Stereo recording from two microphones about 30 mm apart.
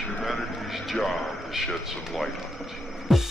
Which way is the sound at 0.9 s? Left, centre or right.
Centre.